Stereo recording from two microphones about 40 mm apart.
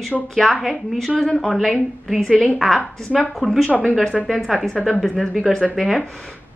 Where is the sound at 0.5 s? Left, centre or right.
Centre.